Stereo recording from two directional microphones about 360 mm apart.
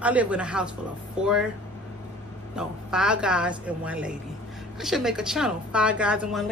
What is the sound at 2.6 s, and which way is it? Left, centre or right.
A woman's voice, centre.